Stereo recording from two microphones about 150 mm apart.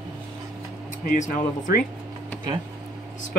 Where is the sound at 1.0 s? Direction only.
60° left (ahead or behind).